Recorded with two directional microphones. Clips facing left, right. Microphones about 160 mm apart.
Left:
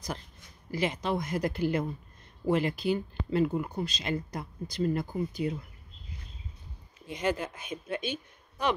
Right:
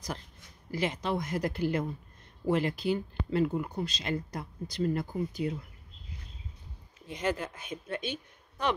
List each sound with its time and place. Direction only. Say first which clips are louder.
0.7 s speech: left 1 dB; 15° left (ahead or behind)
7.1 s speech: left 2 dB; 15° left (ahead or behind)